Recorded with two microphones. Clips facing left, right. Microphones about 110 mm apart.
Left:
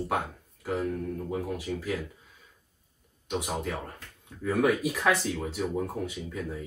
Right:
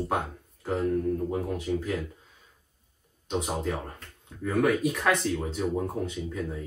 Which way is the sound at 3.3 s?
5° left (ahead or behind).